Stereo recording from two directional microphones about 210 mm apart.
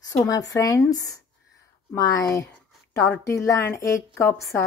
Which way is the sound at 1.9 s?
15° left (ahead or behind).